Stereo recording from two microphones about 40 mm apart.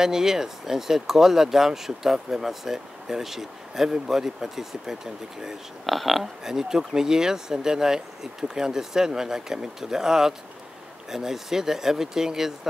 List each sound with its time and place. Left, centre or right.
0.0 s speech: centre
5.9 s speech: centre